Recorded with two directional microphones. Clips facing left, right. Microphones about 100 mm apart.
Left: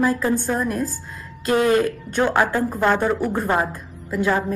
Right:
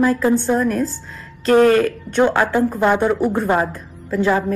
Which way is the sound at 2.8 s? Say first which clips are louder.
Right 2 dB; 15° right (ahead or behind).